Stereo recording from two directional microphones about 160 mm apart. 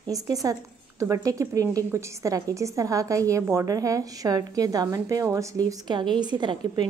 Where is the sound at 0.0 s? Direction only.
20° right (ahead or behind).